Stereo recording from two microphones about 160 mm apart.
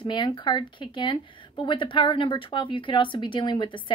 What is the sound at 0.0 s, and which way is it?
A woman's voice, 30° left (ahead or behind).